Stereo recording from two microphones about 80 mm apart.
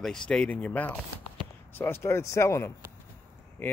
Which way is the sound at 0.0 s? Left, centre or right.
Centre.